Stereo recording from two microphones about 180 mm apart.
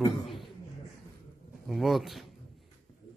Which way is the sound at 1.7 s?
Centre (ahead or behind).